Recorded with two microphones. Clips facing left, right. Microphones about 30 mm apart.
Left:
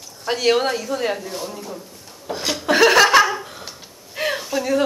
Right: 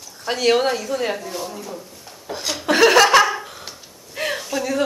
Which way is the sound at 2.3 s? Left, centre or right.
Centre.